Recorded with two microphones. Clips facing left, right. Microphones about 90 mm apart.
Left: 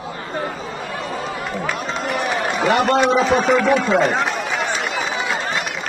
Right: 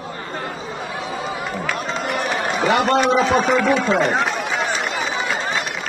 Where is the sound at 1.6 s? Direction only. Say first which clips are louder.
Left 1 dB; 5° left (ahead or behind).